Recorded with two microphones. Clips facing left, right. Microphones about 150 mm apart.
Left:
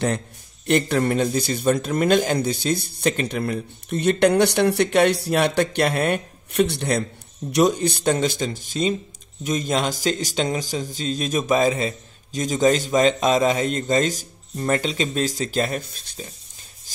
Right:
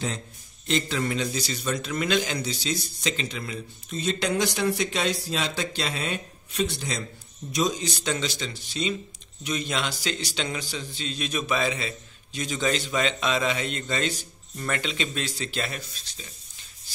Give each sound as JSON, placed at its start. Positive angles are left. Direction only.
{"t": 0.7, "sound": "a man's voice", "side_deg": 60}